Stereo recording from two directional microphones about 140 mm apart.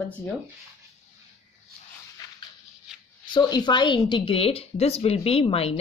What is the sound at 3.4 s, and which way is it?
Speech, 30° left (ahead or behind).